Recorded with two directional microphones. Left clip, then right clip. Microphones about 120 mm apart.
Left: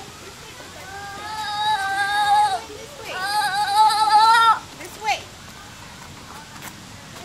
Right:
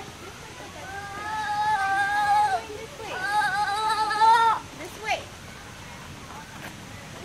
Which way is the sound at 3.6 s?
10° left (ahead or behind).